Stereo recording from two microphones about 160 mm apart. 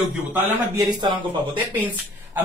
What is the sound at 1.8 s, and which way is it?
Speech, 10° right (ahead or behind).